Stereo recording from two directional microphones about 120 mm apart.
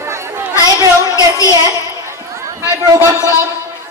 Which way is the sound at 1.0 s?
25° left (ahead or behind).